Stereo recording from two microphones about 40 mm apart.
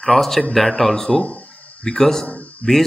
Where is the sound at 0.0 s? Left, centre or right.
Centre.